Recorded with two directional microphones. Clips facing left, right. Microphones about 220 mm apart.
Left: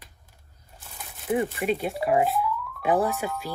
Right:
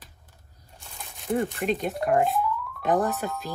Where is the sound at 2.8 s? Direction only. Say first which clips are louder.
Left 1 dB; 10° left (ahead or behind).